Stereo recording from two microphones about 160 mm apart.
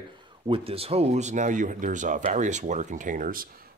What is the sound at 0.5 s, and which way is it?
Speech, 35° right (ahead or behind).